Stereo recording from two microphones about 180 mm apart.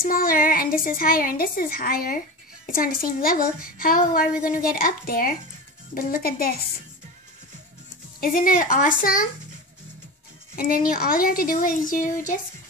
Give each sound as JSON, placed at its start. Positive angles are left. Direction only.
{"t": 0.1, "sound": "a woman's voice", "side_deg": 55}
{"t": 8.2, "sound": "a woman's voice", "side_deg": 50}
{"t": 10.5, "sound": "a woman's voice", "side_deg": 55}